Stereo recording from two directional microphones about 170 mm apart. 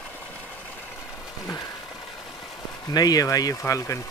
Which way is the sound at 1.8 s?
Centre (ahead or behind).